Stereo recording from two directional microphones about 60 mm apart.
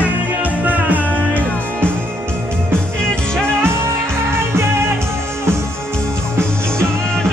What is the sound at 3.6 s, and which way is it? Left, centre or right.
Music, right.